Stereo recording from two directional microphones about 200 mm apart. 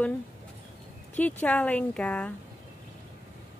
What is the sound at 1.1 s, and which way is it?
Speech, 5° left (ahead or behind).